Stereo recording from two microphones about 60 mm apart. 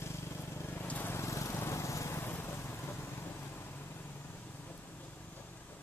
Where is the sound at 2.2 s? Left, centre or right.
Left.